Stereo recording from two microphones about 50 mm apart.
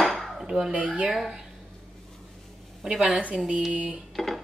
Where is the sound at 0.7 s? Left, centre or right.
Right.